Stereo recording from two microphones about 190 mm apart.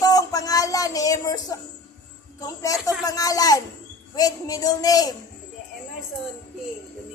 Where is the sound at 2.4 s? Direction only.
15° left (ahead or behind).